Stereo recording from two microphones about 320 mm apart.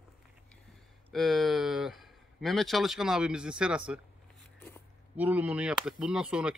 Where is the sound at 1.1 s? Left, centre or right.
Centre.